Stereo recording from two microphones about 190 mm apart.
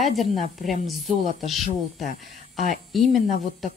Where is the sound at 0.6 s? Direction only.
40° left (ahead or behind).